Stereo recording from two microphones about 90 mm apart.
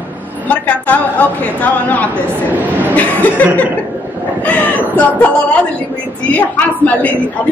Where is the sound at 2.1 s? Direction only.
20° right (ahead or behind).